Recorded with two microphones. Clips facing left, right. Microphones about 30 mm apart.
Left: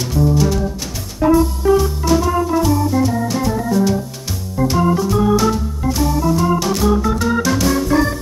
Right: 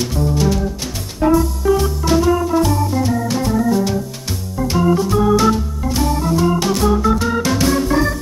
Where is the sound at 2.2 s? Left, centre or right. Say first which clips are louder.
Right 5 dB; centre.